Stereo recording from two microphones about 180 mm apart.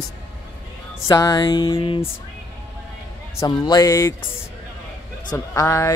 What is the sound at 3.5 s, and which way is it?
Music, 20° left (ahead or behind).